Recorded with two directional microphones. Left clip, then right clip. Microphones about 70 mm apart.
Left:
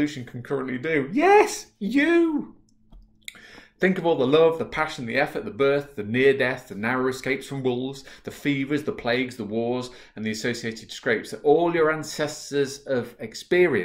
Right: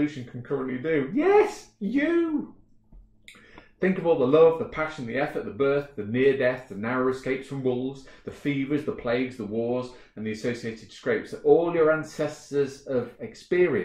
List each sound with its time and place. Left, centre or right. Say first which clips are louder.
0.0 s speech: left 2 dB; left
3.8 s speech: left 1 dB; left